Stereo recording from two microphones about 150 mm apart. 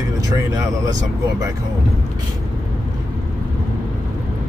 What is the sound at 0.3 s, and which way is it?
Speech, 25° right (ahead or behind).